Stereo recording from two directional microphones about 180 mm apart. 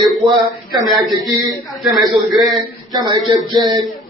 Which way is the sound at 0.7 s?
20° right (ahead or behind).